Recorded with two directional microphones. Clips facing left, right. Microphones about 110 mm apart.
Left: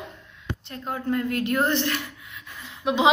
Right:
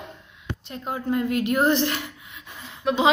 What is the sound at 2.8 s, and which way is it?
Speech, 15° left (ahead or behind).